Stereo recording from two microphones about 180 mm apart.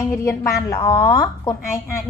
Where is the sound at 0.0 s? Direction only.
15° left (ahead or behind).